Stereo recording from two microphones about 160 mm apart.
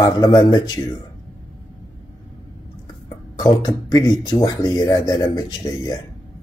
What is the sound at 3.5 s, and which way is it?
Speech, 25° left (ahead or behind).